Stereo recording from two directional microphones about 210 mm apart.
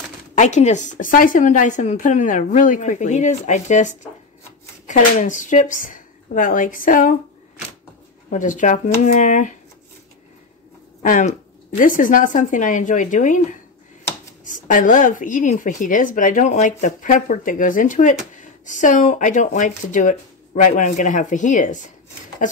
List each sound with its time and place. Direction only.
0.3 s a woman's voice: 35° left (ahead or behind)
8.3 s a woman's voice: 35° left (ahead or behind)
11.0 s a woman's voice: 35° left (ahead or behind)